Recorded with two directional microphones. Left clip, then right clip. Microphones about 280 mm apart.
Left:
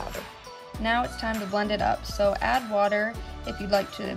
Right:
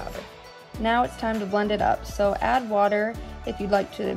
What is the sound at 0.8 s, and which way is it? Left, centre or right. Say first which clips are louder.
Speech: right 3 dB; centre.